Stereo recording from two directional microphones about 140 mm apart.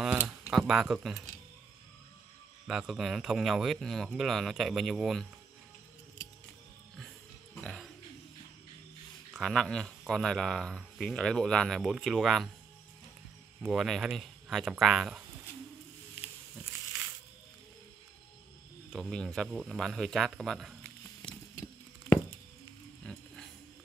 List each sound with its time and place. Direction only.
0.5 s speech: 5° right (ahead or behind)
2.6 s speech: 5° right (ahead or behind)
7.6 s speech: centre (ahead or behind)
9.3 s speech: centre (ahead or behind)
13.6 s speech: centre (ahead or behind)
18.9 s speech: centre (ahead or behind)
21.2 s a sound: 35° left (ahead or behind)
23.0 s a sound: 5° left (ahead or behind)